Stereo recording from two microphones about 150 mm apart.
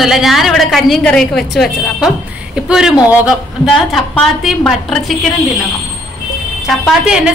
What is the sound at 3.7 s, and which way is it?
A woman's voice, 5° left (ahead or behind).